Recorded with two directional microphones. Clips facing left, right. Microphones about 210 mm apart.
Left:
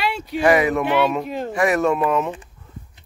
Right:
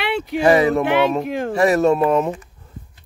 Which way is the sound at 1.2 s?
60° right (ahead or behind).